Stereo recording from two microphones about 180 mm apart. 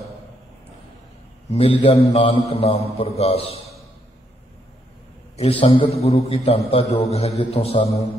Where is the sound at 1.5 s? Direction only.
30° left (ahead or behind).